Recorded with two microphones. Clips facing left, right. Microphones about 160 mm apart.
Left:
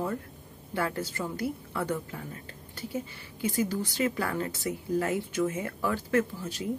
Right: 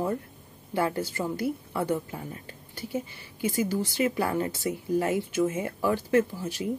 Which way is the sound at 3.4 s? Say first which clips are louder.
Right 2 dB; 10° right (ahead or behind).